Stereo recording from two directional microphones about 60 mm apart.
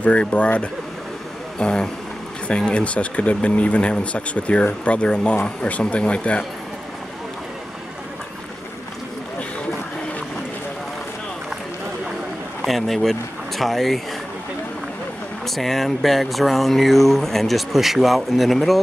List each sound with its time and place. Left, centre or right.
0.0 s speech: left
12.6 s speech: centre
15.4 s speech: centre